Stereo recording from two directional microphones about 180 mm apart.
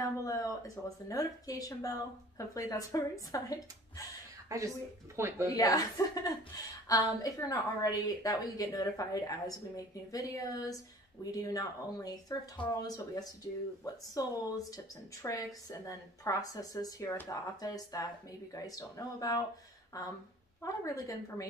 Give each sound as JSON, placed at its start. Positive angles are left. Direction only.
{"t": 0.0, "sound": "speech", "side_deg": 20}
{"t": 4.5, "sound": "speech", "side_deg": -20}
{"t": 5.6, "sound": "speech", "side_deg": 20}
{"t": 15.2, "sound": "speech", "side_deg": 20}